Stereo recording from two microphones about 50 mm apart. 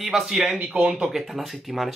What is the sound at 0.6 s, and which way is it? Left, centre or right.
Speech, right.